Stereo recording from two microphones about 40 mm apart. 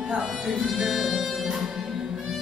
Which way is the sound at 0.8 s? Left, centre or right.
Centre.